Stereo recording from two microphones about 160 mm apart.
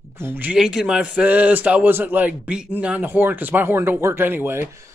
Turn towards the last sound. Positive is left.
turn(degrees=-15)  # may be behind; listen again after turning